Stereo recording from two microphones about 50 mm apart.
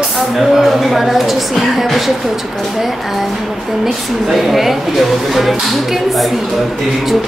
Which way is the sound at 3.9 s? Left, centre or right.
Centre.